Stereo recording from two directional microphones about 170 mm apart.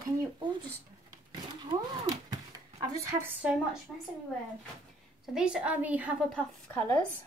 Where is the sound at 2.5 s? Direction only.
20° right (ahead or behind).